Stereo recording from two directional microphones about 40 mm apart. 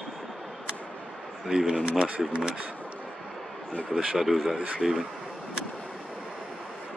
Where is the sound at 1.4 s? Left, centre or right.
Centre.